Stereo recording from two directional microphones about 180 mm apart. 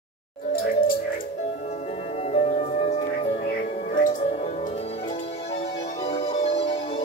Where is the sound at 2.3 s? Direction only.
35° left (ahead or behind).